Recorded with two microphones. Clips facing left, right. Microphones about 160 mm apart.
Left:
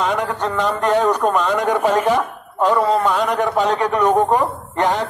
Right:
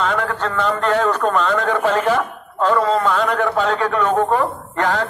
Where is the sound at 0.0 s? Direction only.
15° left (ahead or behind).